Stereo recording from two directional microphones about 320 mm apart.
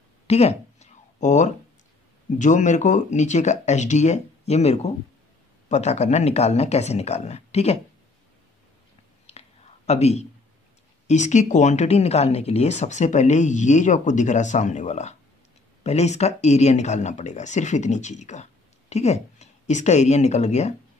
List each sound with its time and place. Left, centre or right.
0.3 s a sound: centre
2.3 s speech: left
9.2 s whispering: centre
11.1 s speech: left